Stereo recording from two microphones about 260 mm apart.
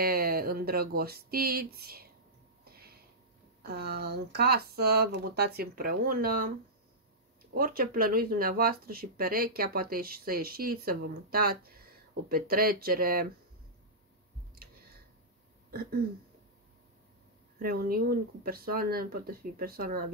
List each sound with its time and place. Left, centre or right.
0.0 s speech: right
2.6 s a sound: right
3.6 s speech: right
7.5 s speech: right
15.7 s throat clearing: right
17.6 s speech: right